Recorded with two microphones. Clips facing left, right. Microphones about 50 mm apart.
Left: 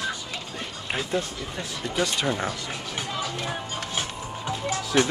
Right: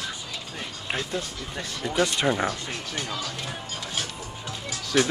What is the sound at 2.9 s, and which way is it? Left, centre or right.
Speech, centre.